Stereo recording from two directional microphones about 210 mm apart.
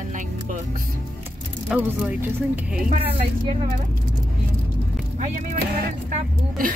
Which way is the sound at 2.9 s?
30° right (ahead or behind).